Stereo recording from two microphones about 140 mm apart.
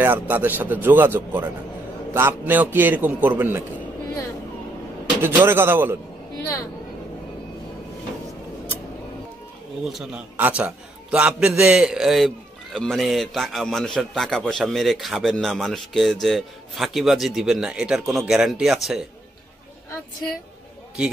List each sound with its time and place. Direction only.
0.0 s a man's voice: 15° right (ahead or behind)
5.2 s a man's voice: 15° right (ahead or behind)
9.8 s a man's voice: centre (ahead or behind)